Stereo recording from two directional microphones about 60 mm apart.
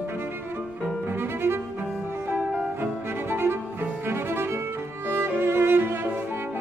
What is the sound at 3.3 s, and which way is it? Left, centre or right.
Music, right.